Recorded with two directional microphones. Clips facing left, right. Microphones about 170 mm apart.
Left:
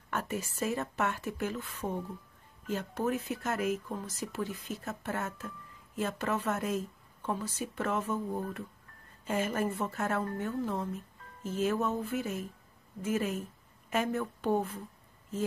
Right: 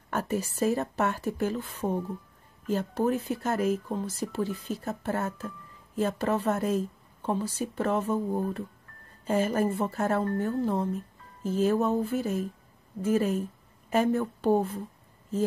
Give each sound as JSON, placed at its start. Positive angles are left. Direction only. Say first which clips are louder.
{"t": 0.1, "sound": "a woman's voice", "louder": "right 6 dB", "side_deg": -35}